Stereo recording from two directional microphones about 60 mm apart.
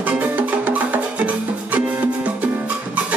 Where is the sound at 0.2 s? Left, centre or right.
Right.